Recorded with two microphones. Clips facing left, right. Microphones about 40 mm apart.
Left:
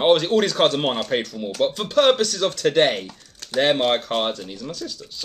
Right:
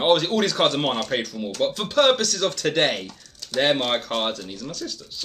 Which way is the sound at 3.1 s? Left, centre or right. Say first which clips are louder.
Left 1 dB; centre.